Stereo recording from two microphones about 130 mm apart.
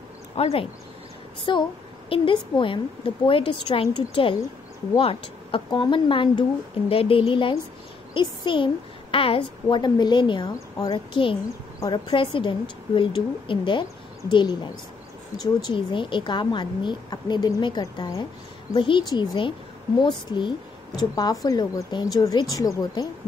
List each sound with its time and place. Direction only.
0.4 s a woman's voice: 50° left (ahead or behind)
1.4 s a woman's voice: 40° left (ahead or behind)